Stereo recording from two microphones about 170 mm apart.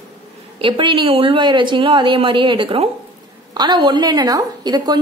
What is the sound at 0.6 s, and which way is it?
A woman's voice, 30° right (ahead or behind).